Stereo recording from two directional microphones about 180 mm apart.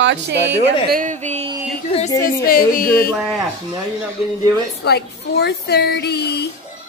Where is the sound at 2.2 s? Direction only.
50° left (ahead or behind).